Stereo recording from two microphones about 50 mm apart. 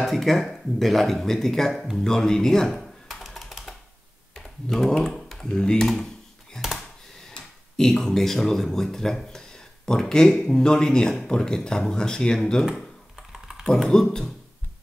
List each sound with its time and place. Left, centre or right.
0.0 s speech: centre
3.1 s computer keyboard: centre
4.4 s speech: centre
6.5 s a sound: centre
7.3 s speech: centre
13.7 s speech: centre